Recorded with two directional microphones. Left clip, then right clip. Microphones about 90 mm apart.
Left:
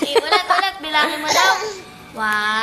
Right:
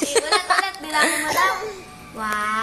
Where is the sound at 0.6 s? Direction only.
20° left (ahead or behind).